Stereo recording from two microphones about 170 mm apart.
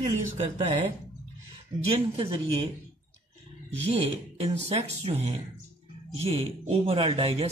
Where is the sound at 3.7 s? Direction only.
35° right (ahead or behind).